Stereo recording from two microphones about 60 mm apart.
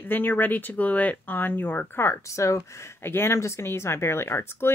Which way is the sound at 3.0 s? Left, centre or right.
Left.